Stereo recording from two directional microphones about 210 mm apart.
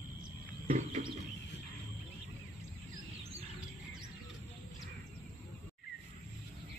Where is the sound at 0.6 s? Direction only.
40° right (ahead or behind).